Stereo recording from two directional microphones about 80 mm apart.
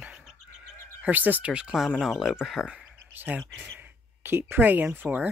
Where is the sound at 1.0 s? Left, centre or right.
Right; by 2.7 s centre.